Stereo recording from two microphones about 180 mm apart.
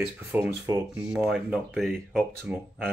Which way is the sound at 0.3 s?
10° right (ahead or behind).